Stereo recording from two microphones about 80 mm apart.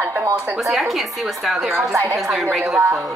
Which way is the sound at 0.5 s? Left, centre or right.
Centre.